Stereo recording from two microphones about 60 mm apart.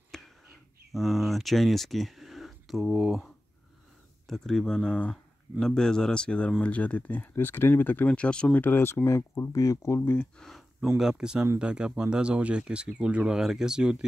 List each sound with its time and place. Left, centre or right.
0.1 s a sound: centre
0.9 s speech: centre
4.3 s speech: centre; by 8.1 s left
8.1 s speech: centre
8.5 s speech: left
11.0 s speech: centre